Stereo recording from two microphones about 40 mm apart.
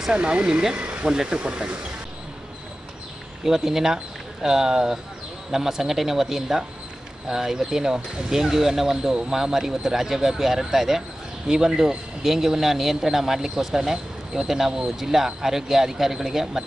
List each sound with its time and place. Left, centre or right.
0.1 s speech: right
0.7 s a sound: right
1.0 s speech: right
3.4 s speech: centre